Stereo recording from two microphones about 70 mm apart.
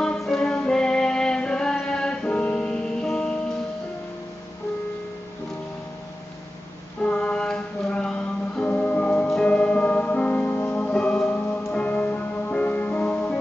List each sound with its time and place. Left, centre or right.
0.2 s music: centre
7.0 s music: centre